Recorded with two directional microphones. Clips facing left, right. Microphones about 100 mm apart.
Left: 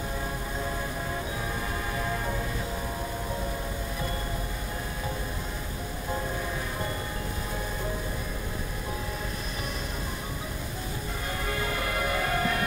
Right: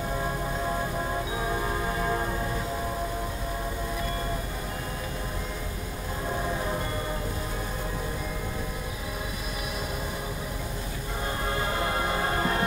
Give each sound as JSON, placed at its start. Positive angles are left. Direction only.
{"t": 11.4, "sound": "music", "side_deg": -30}